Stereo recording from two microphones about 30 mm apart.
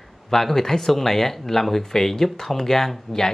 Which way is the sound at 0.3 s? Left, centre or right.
Centre.